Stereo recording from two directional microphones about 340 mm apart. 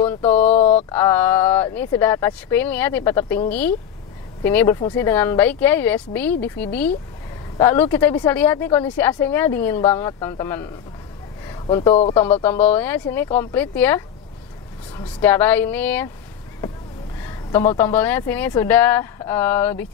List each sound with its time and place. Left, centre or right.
0.0 s a sound: centre
0.9 s speech: centre
17.2 s speech: centre